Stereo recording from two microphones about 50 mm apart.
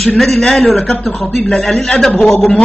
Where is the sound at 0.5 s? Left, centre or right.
Centre.